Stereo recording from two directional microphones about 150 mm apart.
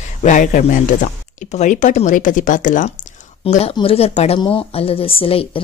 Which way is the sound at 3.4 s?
45° left (ahead or behind).